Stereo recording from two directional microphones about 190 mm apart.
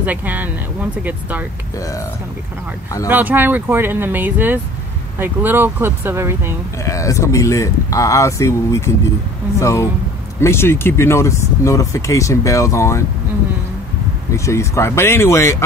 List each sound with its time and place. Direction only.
0.0 s speech: 10° right (ahead or behind)
1.8 s speech: 15° left (ahead or behind)
3.1 s speech: 10° right (ahead or behind)
6.8 s speech: 15° left (ahead or behind)
14.3 s speech: 15° left (ahead or behind)